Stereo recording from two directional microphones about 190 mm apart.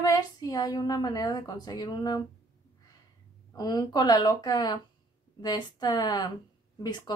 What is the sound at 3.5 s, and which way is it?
A woman's voice, 20° left (ahead or behind).